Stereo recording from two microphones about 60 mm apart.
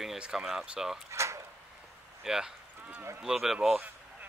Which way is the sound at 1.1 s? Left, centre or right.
Right.